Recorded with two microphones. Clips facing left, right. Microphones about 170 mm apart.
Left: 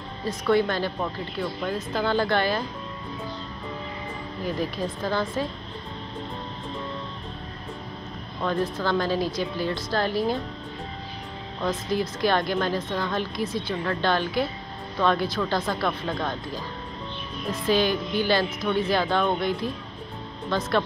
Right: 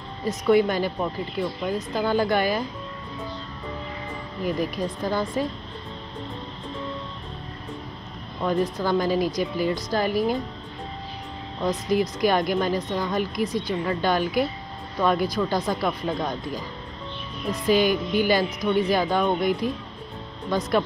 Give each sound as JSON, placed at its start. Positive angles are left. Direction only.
{"t": 0.2, "sound": "a woman's voice", "side_deg": -15}
{"t": 4.7, "sound": "a woman's voice", "side_deg": -15}
{"t": 8.4, "sound": "a woman's voice", "side_deg": -10}
{"t": 11.6, "sound": "a woman's voice", "side_deg": -15}
{"t": 17.5, "sound": "a woman's voice", "side_deg": -15}